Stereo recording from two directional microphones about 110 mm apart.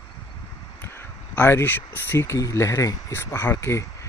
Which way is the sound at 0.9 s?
20° left (ahead or behind).